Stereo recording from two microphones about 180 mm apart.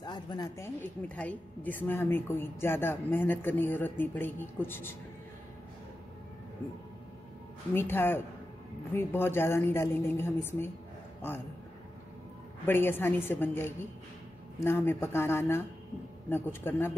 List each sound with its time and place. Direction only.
0.0 s a woman's voice: 25° left (ahead or behind)
1.0 s a woman's voice: 10° left (ahead or behind)
7.7 s a woman's voice: 10° left (ahead or behind)
12.6 s a woman's voice: 10° left (ahead or behind)